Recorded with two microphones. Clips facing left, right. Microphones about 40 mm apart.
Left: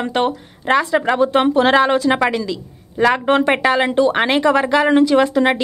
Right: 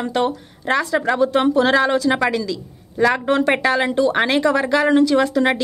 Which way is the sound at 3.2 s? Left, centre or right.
Left.